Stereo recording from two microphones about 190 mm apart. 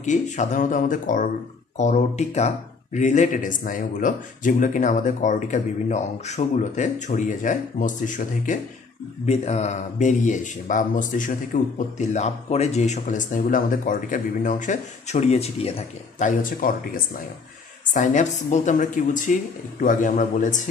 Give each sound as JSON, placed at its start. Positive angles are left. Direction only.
{"t": 0.0, "sound": "speech", "side_deg": 40}